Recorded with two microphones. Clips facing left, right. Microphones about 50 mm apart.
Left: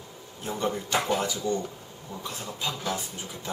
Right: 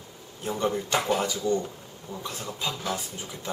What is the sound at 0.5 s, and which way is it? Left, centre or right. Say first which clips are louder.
Speech: right 2 dB; centre.